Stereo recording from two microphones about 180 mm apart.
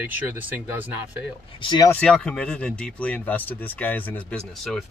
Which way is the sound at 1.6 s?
25° left (ahead or behind).